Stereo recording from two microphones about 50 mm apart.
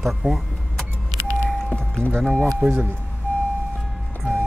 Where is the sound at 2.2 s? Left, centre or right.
Centre.